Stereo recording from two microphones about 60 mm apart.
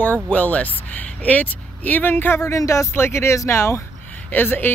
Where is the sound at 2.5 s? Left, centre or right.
Left.